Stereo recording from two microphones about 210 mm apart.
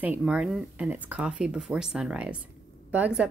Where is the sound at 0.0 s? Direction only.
5° right (ahead or behind).